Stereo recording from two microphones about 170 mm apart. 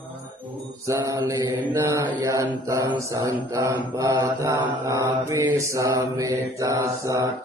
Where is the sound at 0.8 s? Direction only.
20° right (ahead or behind).